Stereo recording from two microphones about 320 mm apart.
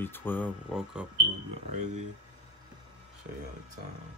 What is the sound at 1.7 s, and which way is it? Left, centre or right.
Speech, right.